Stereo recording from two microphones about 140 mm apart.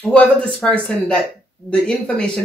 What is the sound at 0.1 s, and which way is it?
Speech, 5° left (ahead or behind).